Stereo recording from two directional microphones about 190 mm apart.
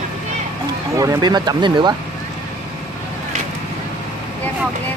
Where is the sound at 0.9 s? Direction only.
20° right (ahead or behind).